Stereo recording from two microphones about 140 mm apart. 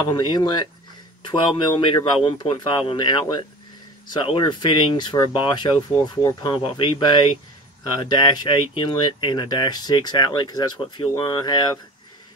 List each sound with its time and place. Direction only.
0.1 s speech: 30° left (ahead or behind)